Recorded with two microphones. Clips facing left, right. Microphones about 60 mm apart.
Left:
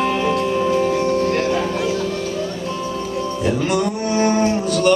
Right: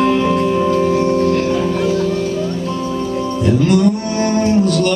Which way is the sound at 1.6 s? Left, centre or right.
Centre.